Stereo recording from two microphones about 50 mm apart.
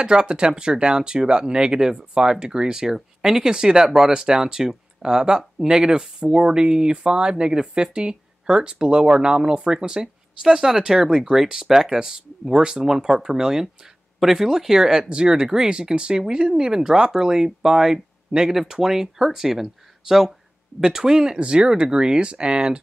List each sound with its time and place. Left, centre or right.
0.0 s speech: centre